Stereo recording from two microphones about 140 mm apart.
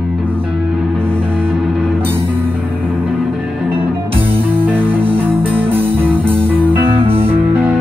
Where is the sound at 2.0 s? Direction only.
15° right (ahead or behind).